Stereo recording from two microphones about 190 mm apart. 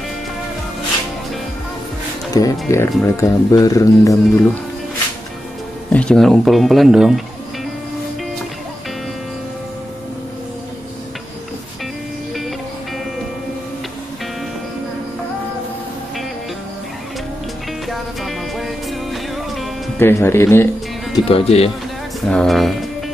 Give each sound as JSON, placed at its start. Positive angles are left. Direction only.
{"t": 2.3, "sound": "speech", "side_deg": 15}
{"t": 5.9, "sound": "speech", "side_deg": 5}
{"t": 17.8, "sound": "music", "side_deg": 0}
{"t": 20.0, "sound": "speech", "side_deg": 10}
{"t": 21.3, "sound": "speech", "side_deg": 30}
{"t": 22.3, "sound": "speech", "side_deg": 0}